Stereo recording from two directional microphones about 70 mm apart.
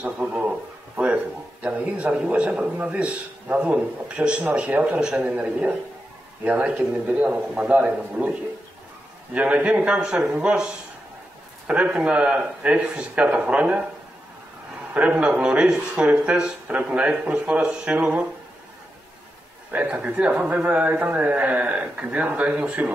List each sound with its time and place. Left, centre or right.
0.0 s a man's voice: centre
15.0 s speech: centre
19.7 s speech: centre